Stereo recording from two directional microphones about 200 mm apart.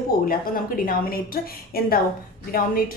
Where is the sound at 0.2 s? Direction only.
45° left (ahead or behind).